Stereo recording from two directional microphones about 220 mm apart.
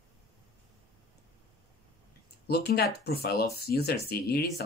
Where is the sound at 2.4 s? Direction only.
45° left (ahead or behind).